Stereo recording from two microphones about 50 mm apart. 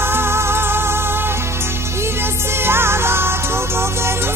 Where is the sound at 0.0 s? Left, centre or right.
Right.